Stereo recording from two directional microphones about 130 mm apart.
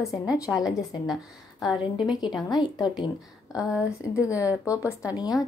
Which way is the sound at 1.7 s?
35° left (ahead or behind).